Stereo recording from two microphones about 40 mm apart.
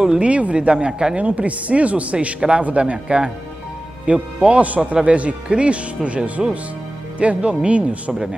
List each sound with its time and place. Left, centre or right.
0.2 s speech: right
1.1 s speech: right